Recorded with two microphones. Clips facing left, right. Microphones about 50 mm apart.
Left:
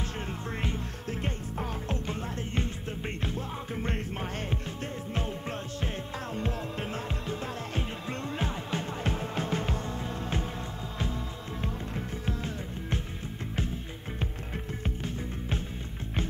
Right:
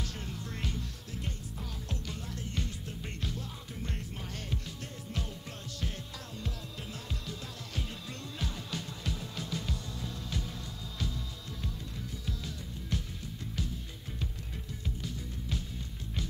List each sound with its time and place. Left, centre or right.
0.3 s music: left
6.3 s music: left
12.3 s music: left